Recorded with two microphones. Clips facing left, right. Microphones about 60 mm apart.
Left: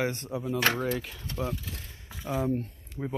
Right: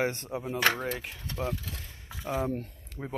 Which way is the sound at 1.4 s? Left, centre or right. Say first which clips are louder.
Even; right.